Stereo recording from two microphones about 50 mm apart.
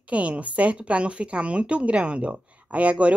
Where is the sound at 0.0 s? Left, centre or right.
Right.